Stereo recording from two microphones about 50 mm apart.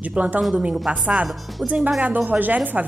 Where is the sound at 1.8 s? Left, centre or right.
Centre.